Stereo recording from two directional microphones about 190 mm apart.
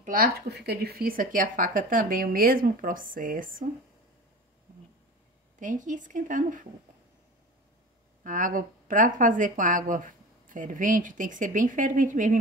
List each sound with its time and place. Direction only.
0.0 s speech: 50° right (ahead or behind)
5.6 s a woman's voice: 40° right (ahead or behind)
8.2 s speech: 45° right (ahead or behind)